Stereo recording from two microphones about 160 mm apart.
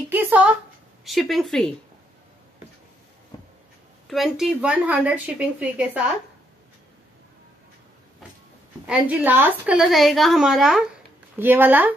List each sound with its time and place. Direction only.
0.1 s a woman's voice: 10° right (ahead or behind)
3.3 s a sound: 25° left (ahead or behind)
4.1 s a woman's voice: centre (ahead or behind)
8.8 s a woman's voice: 10° right (ahead or behind)
11.3 s a woman's voice: 15° right (ahead or behind)